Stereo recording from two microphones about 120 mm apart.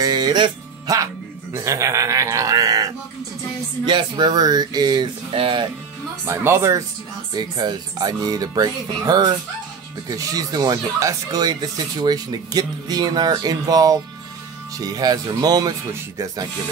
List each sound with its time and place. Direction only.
0.0 s music: 35° right (ahead or behind)
1.5 s a sound: 25° right (ahead or behind)
3.8 s speech: 35° right (ahead or behind)
6.2 s speech: 20° right (ahead or behind)
7.3 s speech: 35° right (ahead or behind)